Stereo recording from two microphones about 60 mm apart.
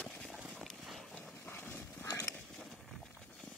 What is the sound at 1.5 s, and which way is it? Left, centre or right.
Dog, left.